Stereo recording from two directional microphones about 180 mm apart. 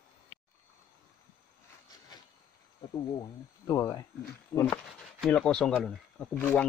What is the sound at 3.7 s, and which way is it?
Speech, 15° left (ahead or behind).